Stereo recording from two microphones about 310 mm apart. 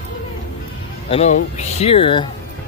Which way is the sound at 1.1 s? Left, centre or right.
Left.